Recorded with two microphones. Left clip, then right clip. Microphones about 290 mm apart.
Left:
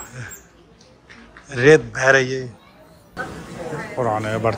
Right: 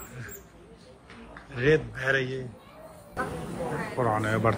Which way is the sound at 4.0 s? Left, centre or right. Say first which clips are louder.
Left 5 dB; centre.